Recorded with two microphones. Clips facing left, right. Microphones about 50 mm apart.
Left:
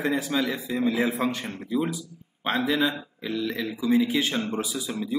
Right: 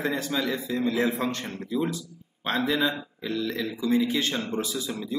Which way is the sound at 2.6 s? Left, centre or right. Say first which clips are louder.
Even; centre.